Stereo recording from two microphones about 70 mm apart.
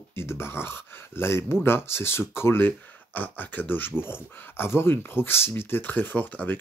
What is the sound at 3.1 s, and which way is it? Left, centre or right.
Speech, left.